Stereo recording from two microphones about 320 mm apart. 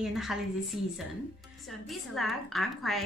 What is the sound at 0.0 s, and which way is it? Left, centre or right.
Speech, centre.